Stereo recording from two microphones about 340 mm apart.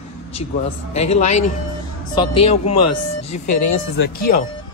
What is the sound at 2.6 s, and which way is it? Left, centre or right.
Speech, left.